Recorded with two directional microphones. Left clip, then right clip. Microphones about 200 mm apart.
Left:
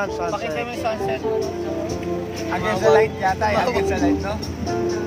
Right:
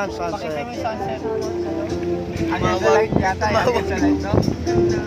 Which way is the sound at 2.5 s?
40° left (ahead or behind).